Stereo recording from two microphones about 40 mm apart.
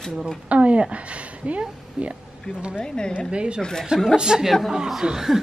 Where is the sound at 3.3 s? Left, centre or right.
Right.